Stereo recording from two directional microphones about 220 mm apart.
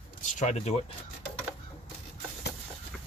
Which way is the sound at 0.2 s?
35° left (ahead or behind).